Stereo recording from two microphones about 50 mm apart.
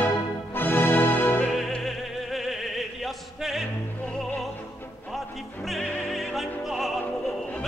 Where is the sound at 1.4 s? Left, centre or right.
Centre.